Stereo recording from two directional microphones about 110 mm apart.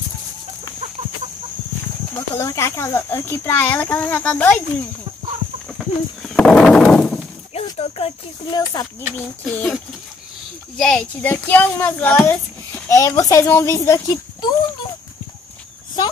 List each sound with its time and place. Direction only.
2.3 s a child's voice: 25° left (ahead or behind)
5.8 s a sound: 5° left (ahead or behind)
7.5 s a sound: 70° left (ahead or behind)
8.5 s speech: 40° left (ahead or behind)
9.1 s a child's voice: 10° left (ahead or behind)
10.8 s a child's voice: 5° left (ahead or behind)
11.1 s a child's voice: 15° left (ahead or behind); by 14.5 s 35° left (ahead or behind)